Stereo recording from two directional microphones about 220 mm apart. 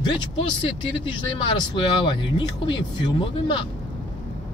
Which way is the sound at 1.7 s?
20° left (ahead or behind).